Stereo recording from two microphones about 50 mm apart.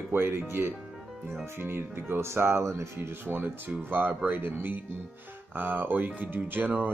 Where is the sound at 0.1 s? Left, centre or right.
Right.